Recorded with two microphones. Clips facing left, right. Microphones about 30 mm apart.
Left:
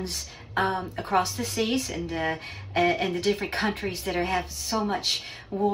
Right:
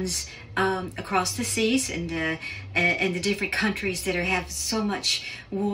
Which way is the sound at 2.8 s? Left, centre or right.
Right.